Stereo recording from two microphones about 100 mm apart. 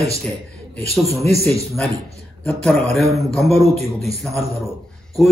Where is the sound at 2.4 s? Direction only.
15° left (ahead or behind).